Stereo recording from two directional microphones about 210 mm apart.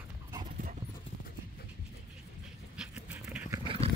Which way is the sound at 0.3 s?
20° right (ahead or behind).